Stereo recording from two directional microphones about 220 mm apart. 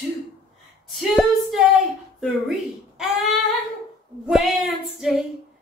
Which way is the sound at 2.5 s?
Centre (ahead or behind).